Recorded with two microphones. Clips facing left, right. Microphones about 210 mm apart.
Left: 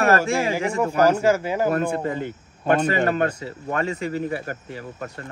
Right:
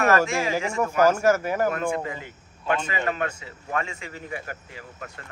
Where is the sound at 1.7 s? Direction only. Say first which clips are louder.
Left 4 dB; 35° left (ahead or behind).